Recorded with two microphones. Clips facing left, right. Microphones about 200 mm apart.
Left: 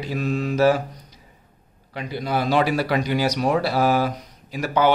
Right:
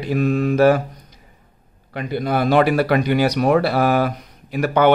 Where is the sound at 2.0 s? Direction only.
55° right (ahead or behind).